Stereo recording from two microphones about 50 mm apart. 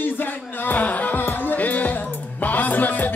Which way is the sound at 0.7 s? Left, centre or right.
Left.